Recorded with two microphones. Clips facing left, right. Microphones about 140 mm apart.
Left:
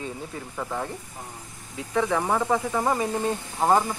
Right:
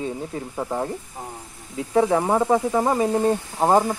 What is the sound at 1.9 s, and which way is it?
Speech, 30° right (ahead or behind).